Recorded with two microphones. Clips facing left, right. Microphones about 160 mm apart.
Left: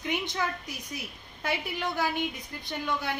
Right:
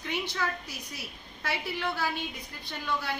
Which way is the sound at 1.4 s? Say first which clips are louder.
Left 2 dB; 20° left (ahead or behind).